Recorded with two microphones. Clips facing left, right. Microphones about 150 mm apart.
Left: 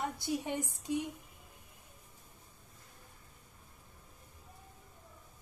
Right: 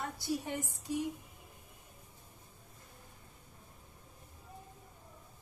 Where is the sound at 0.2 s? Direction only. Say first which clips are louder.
Left 1 dB; 20° left (ahead or behind).